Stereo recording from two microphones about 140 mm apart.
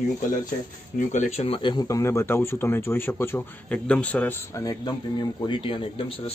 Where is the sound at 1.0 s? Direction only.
60° left (ahead or behind); by 4.3 s 10° left (ahead or behind).